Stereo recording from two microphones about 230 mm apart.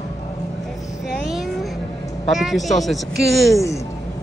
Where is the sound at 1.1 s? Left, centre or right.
Centre.